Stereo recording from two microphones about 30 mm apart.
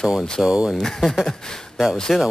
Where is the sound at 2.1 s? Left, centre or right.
Centre.